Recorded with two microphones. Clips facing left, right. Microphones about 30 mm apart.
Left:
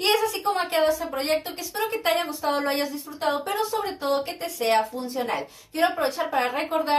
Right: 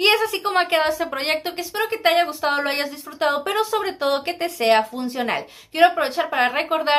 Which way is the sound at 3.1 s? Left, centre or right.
Right.